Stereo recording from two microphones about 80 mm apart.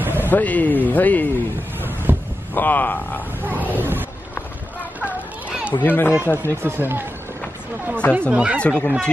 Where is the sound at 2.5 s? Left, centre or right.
Left.